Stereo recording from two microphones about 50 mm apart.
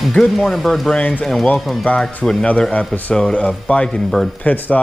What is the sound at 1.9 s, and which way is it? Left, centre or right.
Speech, left.